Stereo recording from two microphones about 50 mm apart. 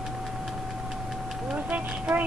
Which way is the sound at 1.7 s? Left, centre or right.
Right.